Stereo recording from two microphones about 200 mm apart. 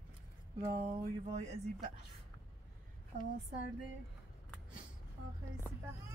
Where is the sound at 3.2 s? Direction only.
45° left (ahead or behind).